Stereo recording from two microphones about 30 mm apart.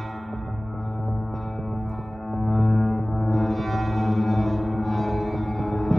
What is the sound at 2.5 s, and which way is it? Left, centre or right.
Music, centre.